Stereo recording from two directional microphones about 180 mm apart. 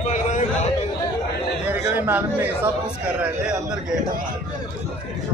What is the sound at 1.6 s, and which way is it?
Speech, 10° right (ahead or behind).